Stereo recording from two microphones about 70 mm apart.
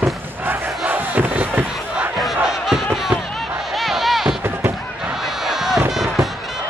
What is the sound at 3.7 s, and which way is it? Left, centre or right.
Music, centre.